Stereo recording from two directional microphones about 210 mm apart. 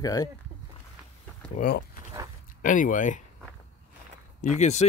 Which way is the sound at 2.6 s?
40° left (ahead or behind).